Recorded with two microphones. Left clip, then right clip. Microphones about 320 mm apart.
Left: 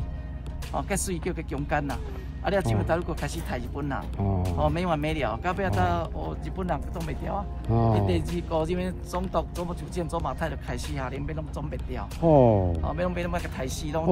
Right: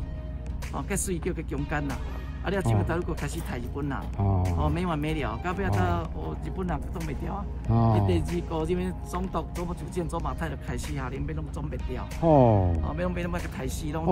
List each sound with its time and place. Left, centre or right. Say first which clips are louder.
0.7 s speech: left 2 dB; centre
7.7 s speech: left 1 dB; centre
8.1 s speech: left 1 dB; centre
12.2 s speech: left 1 dB; right
12.8 s speech: left 3 dB; centre